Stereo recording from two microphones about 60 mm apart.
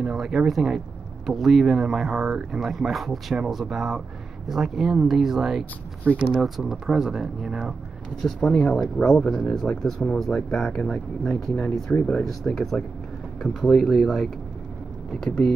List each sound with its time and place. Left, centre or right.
0.0 s speech: centre
8.2 s speech: centre
11.9 s speech: left
12.3 s speech: centre
15.2 s speech: centre